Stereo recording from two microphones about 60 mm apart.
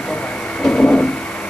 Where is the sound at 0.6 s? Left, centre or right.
Centre.